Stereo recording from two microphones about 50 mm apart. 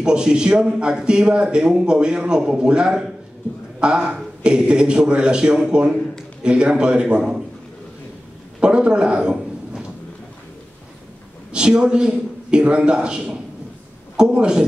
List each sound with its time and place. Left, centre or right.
0.0 s a man's voice: centre
8.5 s a sound: right
11.5 s a man's voice: centre